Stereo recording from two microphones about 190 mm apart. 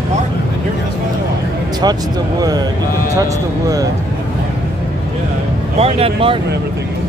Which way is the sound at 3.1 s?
20° right (ahead or behind).